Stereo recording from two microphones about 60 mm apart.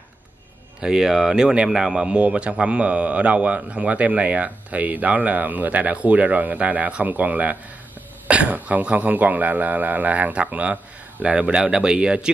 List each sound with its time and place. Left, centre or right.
0.7 s speech: centre